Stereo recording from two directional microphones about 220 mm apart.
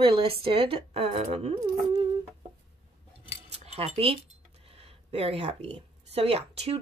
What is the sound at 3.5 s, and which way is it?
Cutlery, 30° right (ahead or behind).